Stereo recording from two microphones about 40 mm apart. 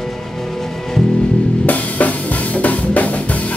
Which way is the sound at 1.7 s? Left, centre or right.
Left.